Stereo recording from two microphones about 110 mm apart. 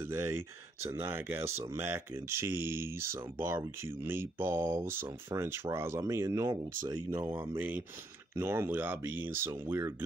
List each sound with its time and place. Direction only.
0.0 s speech: 20° right (ahead or behind)